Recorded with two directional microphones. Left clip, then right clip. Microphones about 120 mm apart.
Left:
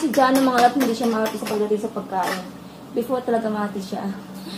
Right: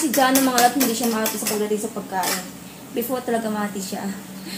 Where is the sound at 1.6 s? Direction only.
15° right (ahead or behind).